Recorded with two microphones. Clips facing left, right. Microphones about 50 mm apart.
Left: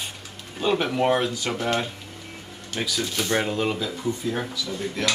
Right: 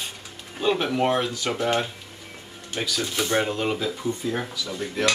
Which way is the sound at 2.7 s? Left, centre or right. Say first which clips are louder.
Even; centre.